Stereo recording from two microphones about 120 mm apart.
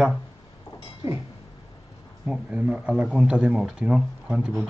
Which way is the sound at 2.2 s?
5° right (ahead or behind).